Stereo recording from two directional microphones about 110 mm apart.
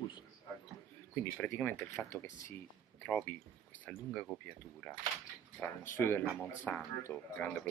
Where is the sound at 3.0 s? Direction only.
10° left (ahead or behind).